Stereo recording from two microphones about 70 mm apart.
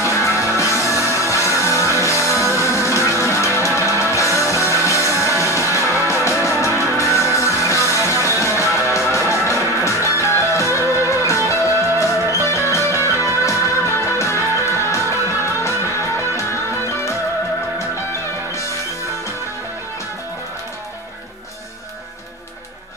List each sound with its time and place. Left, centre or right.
0.1 s music: left